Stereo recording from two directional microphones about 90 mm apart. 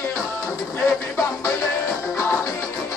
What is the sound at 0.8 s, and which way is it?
Music, 20° left (ahead or behind).